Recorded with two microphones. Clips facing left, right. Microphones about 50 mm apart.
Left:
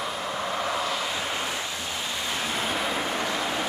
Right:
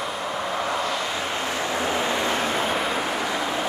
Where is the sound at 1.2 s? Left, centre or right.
Centre.